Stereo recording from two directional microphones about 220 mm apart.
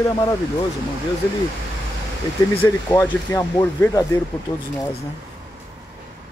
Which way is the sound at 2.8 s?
10° left (ahead or behind).